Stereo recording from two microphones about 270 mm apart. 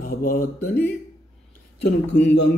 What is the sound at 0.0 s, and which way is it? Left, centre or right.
Speech, left.